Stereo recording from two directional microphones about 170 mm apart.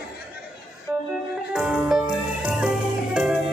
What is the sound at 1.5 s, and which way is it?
Music, centre (ahead or behind).